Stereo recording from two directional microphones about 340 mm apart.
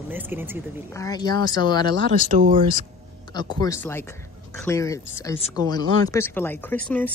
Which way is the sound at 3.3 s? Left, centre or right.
Centre.